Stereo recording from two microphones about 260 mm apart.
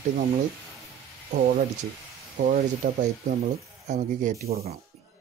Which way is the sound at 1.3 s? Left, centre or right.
Right.